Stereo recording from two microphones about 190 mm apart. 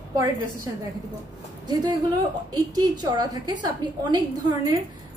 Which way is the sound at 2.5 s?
20° right (ahead or behind).